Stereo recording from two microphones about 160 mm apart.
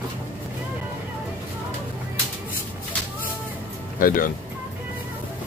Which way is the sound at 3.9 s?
60° left (ahead or behind).